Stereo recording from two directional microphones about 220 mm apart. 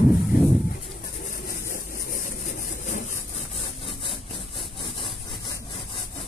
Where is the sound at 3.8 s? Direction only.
25° left (ahead or behind).